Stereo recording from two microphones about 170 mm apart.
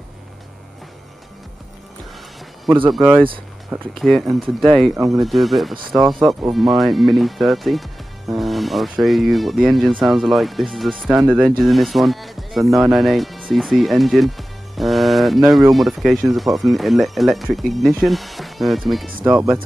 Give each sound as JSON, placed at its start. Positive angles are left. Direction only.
{"t": 2.9, "sound": "speech", "side_deg": -10}
{"t": 4.0, "sound": "speech", "side_deg": 0}
{"t": 4.9, "sound": "speech", "side_deg": -20}
{"t": 5.2, "sound": "speech", "side_deg": 0}